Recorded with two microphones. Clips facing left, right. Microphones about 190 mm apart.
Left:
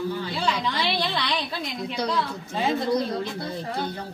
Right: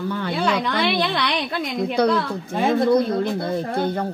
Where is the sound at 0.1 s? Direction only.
60° right (ahead or behind).